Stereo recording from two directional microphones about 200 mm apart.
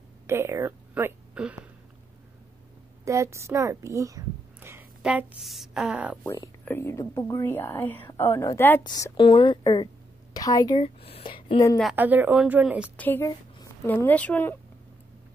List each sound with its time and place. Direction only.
0.3 s speech: 15° right (ahead or behind)
3.1 s a woman's voice: 15° right (ahead or behind)
6.6 s a woman's voice: 10° left (ahead or behind)
10.8 s a woman's voice: 30° left (ahead or behind)
11.8 s a woman's voice: 10° right (ahead or behind)
12.9 s a woman's voice: 10° left (ahead or behind)